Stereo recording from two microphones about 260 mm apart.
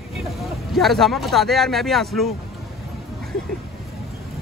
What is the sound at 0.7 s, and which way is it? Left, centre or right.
Speech, centre.